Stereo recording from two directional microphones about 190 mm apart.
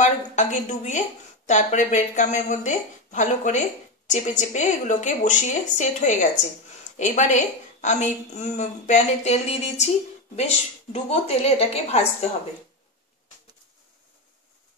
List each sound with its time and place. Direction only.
0.0 s a woman's voice: 40° left (ahead or behind)